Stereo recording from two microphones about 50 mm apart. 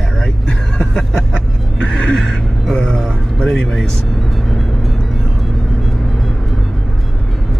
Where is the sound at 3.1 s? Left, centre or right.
Centre.